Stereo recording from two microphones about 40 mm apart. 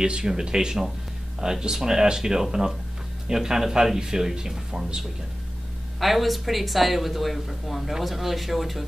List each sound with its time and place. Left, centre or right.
0.0 s speech: centre
5.9 s speech: centre